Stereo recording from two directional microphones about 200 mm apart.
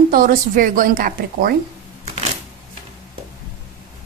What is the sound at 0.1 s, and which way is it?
A woman's voice, 45° right (ahead or behind).